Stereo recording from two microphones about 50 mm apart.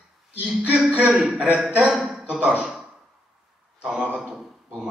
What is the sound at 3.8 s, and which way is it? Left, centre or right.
Speech, right.